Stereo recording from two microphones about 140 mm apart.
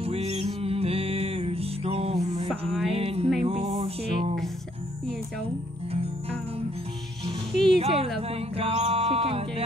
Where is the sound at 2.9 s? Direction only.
45° right (ahead or behind).